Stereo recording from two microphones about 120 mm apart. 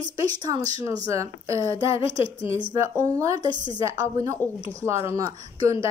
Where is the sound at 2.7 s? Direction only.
25° right (ahead or behind).